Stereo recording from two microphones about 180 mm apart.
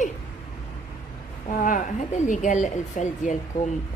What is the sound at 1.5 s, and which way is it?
A woman's voice, 45° left (ahead or behind).